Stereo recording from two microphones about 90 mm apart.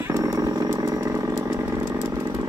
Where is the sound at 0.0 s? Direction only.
35° right (ahead or behind).